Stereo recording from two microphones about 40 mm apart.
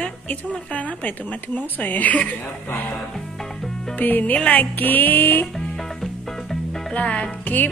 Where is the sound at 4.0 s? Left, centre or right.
Left.